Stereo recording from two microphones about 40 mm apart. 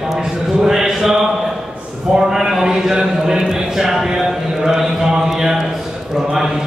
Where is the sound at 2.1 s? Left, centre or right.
Centre.